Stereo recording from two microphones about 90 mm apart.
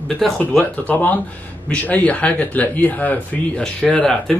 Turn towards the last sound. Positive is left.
turn(degrees=10)  # may be behind; listen again after turning